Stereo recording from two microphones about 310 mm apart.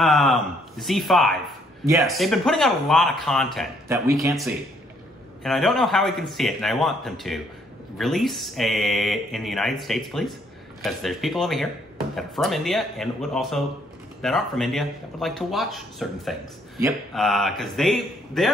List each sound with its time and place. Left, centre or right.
0.0 s speech: centre